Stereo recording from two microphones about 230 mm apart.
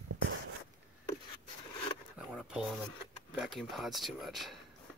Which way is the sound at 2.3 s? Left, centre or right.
Centre.